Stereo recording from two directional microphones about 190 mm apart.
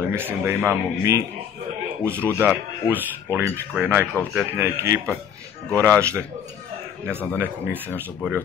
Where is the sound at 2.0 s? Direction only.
10° left (ahead or behind).